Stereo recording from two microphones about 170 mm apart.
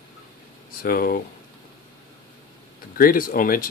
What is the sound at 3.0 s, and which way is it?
Speech, 55° left (ahead or behind).